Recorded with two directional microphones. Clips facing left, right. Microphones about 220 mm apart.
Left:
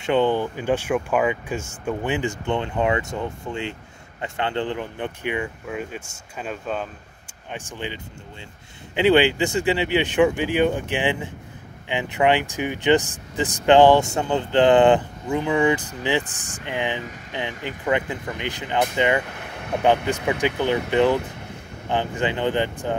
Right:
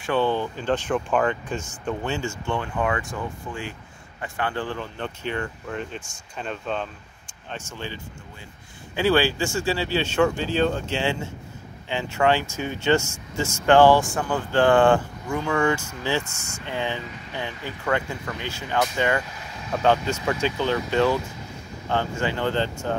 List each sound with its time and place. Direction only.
0.0 s speech: 20° left (ahead or behind)
7.5 s speech: 15° left (ahead or behind)
16.3 s speech: 35° left (ahead or behind)
16.6 s speech: 15° left (ahead or behind)
19.2 s vehicle: 60° left (ahead or behind)
20.2 s speech: 15° left (ahead or behind)
21.2 s a sound: 60° left (ahead or behind)
21.8 s speech: 15° left (ahead or behind)